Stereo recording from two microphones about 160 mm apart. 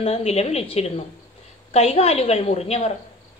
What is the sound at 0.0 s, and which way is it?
A woman's voice, 40° left (ahead or behind).